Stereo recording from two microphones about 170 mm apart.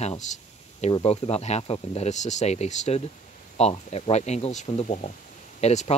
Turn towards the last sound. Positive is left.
turn(degrees=40)  # may be behind; listen again after turning